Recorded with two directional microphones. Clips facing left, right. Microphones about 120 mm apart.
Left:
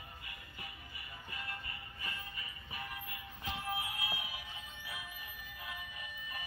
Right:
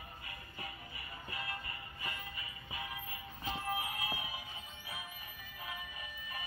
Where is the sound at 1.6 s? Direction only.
25° right (ahead or behind).